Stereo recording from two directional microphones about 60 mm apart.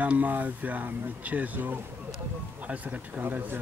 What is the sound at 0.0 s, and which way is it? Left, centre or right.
Speech, right.